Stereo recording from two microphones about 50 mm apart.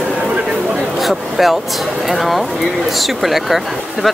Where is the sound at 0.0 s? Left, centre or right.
Right.